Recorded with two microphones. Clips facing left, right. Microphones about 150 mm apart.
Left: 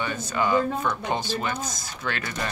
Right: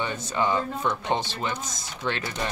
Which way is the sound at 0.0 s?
25° right (ahead or behind).